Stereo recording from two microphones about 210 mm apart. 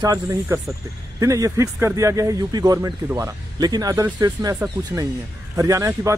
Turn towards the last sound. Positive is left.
turn(degrees=-15)  # may be behind; listen again after turning